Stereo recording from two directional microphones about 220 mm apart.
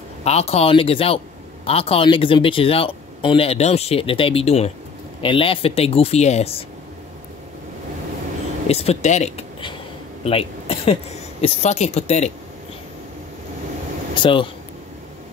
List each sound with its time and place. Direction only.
0.2 s a man's voice: 30° left (ahead or behind)
8.6 s speech: 30° left (ahead or behind)
14.1 s a man's voice: 20° left (ahead or behind)